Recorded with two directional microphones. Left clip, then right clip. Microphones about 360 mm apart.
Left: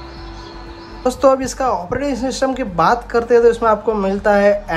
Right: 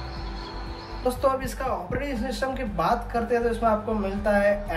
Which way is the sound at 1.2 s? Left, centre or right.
Centre.